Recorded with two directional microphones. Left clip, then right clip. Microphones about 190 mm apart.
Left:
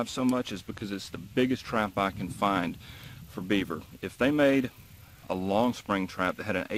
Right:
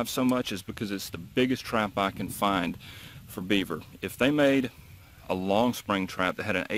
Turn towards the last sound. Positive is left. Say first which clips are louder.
# right 2 dB
turn(degrees=-55)  # may be behind; listen again after turning